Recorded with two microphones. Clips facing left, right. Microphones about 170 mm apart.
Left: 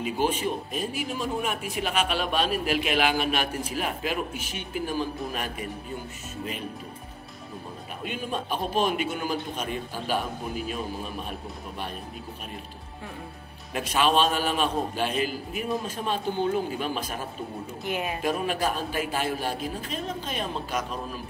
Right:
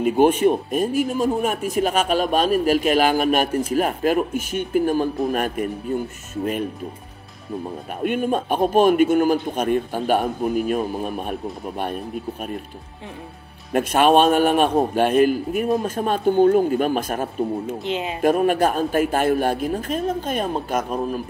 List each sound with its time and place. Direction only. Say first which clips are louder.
0.0 s speech: right 11 dB; 55° right (ahead or behind)
8.0 s speech: right 11 dB; 55° right (ahead or behind)
13.7 s speech: right 8 dB; 55° right (ahead or behind)
17.8 s speech: right 2 dB; 20° right (ahead or behind)
18.2 s speech: right 11 dB; 50° right (ahead or behind)